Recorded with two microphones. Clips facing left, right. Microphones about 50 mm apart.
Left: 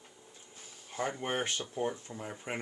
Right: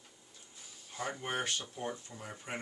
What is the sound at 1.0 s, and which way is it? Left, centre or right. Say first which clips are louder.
Speech: left 3 dB; left.